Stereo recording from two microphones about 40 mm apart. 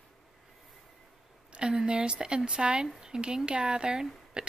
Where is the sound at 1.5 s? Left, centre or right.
Right.